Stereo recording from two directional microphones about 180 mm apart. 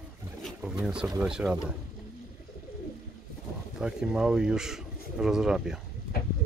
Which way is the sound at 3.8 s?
5° right (ahead or behind).